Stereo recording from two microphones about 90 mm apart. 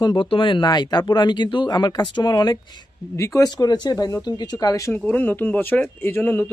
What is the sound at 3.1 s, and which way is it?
Speech, 35° left (ahead or behind).